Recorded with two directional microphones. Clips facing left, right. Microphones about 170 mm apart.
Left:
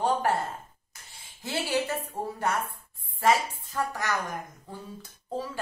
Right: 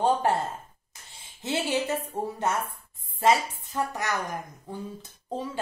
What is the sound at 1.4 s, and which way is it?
A woman's voice, 20° right (ahead or behind).